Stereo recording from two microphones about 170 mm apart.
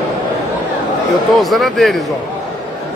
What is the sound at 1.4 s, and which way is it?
Speech, centre (ahead or behind).